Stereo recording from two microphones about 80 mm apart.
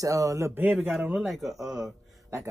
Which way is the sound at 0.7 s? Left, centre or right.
Centre.